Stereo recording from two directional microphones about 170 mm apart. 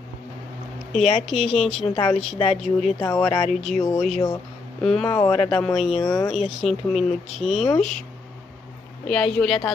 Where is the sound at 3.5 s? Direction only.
Centre (ahead or behind).